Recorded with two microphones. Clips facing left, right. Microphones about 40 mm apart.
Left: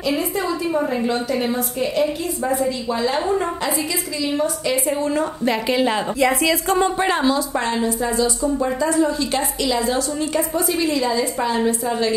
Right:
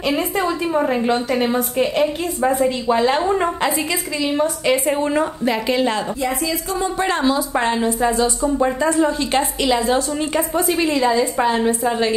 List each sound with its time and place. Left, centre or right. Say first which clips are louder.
0.1 s a woman's voice: right 2 dB; right
4.4 s a woman's voice: right 4 dB; right
5.4 s a woman's voice: right 1 dB; centre
7.0 s speech: even; centre
7.3 s a woman's voice: right 2 dB; right